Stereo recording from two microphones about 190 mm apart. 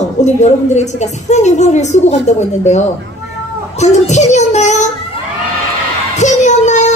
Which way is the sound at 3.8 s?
35° left (ahead or behind).